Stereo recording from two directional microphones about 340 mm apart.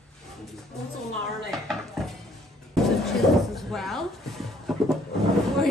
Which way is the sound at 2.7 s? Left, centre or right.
Centre.